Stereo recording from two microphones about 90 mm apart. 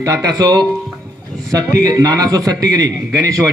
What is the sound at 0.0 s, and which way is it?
A man's voice, 40° right (ahead or behind).